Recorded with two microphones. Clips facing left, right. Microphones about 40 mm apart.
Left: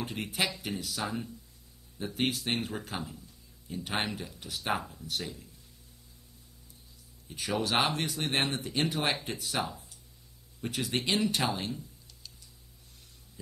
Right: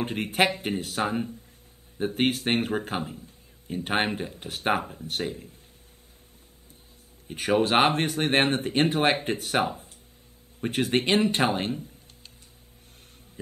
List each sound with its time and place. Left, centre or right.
0.0 s speech: right
7.2 s speech: right